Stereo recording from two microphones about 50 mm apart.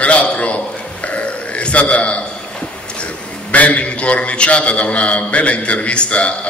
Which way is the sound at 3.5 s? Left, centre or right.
Left.